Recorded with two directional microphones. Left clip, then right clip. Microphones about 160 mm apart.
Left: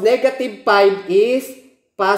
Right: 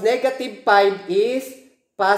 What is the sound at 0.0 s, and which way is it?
Speech, 40° left (ahead or behind).